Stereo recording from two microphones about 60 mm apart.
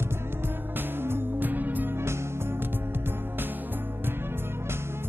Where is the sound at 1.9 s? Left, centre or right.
Right.